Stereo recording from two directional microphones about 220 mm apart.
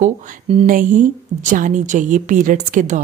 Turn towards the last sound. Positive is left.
turn(degrees=-35)  # may be behind; listen again after turning